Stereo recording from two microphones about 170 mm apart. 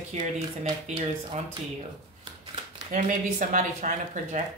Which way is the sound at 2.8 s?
50° right (ahead or behind).